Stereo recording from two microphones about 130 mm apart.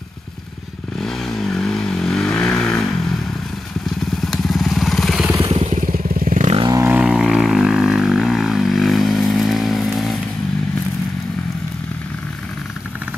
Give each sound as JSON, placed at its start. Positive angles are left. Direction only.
{"t": 1.0, "sound": "vehicle", "side_deg": 0}
{"t": 4.2, "sound": "vehicle", "side_deg": 0}
{"t": 5.5, "sound": "motorcycle", "side_deg": -45}
{"t": 5.9, "sound": "vehicle", "side_deg": -90}
{"t": 6.7, "sound": "vehicle", "side_deg": -20}
{"t": 7.0, "sound": "vehicle", "side_deg": -5}